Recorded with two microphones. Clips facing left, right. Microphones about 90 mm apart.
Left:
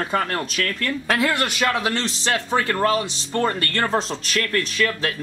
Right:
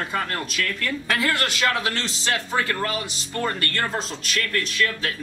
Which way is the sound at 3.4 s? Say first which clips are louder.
Left 4 dB; 30° left (ahead or behind).